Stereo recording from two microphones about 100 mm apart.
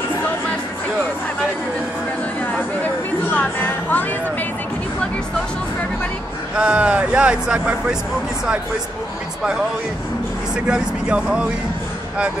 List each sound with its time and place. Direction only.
2.5 s a sound: 15° left (ahead or behind)
6.6 s speech: 15° right (ahead or behind)
10.5 s speech: 10° right (ahead or behind)